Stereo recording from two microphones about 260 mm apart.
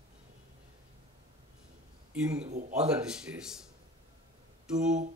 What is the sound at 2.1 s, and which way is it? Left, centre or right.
Speech, centre.